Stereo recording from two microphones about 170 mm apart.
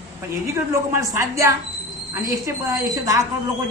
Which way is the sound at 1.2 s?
15° right (ahead or behind).